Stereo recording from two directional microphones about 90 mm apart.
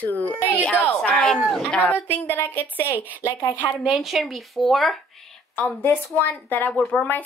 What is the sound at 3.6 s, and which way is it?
Speech, 10° left (ahead or behind).